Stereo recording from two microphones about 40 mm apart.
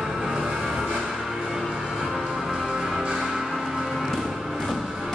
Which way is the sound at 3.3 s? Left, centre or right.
Centre.